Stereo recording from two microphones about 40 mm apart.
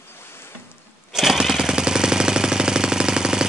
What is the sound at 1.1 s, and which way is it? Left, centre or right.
Jackhammer, centre.